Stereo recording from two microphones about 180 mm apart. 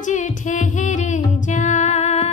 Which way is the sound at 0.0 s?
45° left (ahead or behind).